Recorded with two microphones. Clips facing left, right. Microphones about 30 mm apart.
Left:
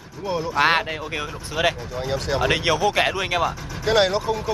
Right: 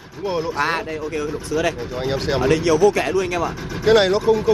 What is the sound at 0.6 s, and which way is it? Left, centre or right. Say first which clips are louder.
Speech: left 4 dB; centre.